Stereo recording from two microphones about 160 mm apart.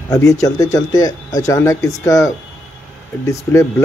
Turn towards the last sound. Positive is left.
turn(degrees=20)  # may be behind; listen again after turning